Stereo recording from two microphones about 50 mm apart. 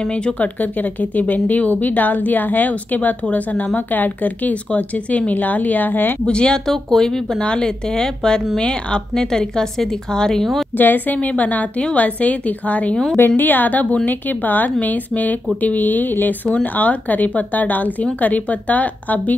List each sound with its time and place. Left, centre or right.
0.0 s a woman's voice: left
6.2 s a woman's voice: centre
10.8 s a woman's voice: left